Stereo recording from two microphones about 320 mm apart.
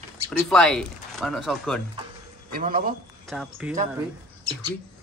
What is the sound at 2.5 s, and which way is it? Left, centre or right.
Speech, right.